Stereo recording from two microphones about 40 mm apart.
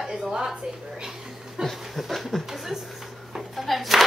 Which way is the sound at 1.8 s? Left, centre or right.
Centre.